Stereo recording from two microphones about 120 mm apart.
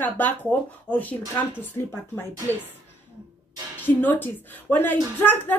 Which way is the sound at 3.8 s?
15° left (ahead or behind).